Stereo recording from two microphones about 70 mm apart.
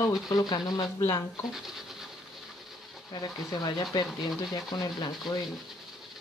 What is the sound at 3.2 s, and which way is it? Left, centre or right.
Speech, left.